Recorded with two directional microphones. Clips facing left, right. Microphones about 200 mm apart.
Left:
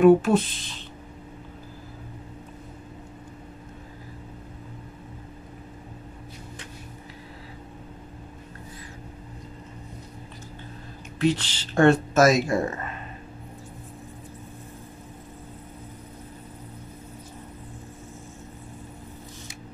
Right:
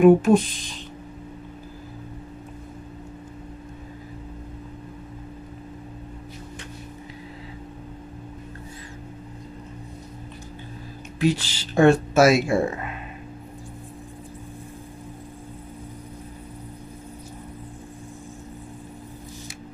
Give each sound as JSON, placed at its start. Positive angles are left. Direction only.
{"t": 0.0, "sound": "speech", "side_deg": -15}
{"t": 11.1, "sound": "speech", "side_deg": -10}